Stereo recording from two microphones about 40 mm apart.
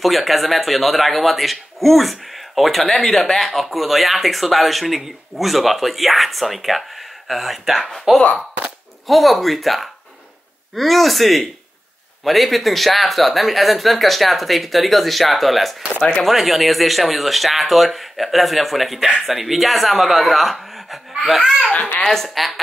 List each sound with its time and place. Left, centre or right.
0.0 s speech: centre
8.1 s speech: centre
9.0 s speech: centre
20.7 s wail: centre
21.7 s a child's voice: left
22.0 s speech: centre